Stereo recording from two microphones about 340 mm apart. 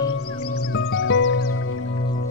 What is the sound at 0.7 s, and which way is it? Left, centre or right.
Music, left.